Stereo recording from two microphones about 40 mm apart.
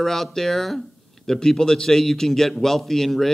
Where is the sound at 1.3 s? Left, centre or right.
Centre.